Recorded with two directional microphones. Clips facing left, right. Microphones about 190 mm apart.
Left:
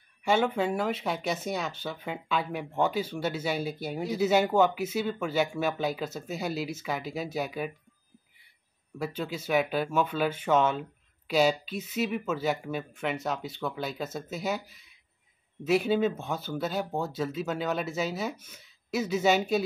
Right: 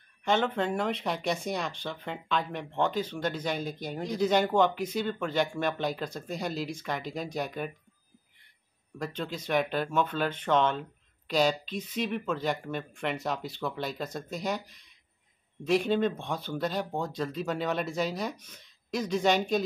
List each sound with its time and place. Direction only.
0.2 s speech: 10° left (ahead or behind)
8.9 s speech: 5° left (ahead or behind)